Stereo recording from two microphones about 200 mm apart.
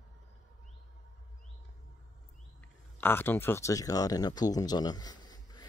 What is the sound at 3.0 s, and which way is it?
Speech, 10° left (ahead or behind).